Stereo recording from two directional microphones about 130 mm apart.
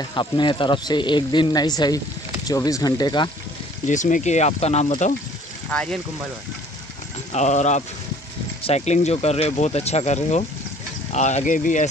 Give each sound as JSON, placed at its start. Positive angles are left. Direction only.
{"t": 0.1, "sound": "a man's voice", "side_deg": 35}
{"t": 3.8, "sound": "speech", "side_deg": 75}
{"t": 7.3, "sound": "speech", "side_deg": 60}